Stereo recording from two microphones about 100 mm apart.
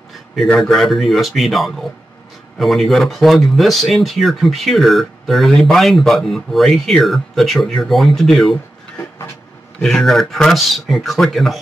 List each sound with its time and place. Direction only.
0.4 s speech: centre (ahead or behind)
9.8 s speech: 5° left (ahead or behind)